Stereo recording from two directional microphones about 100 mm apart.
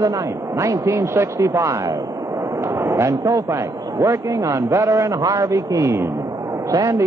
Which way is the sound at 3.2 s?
35° right (ahead or behind).